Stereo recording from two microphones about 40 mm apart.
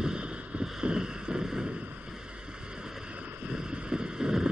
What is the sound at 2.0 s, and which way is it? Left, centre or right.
Boat, right.